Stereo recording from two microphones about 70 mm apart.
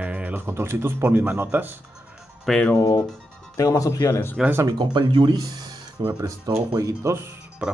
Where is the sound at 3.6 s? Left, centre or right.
Left.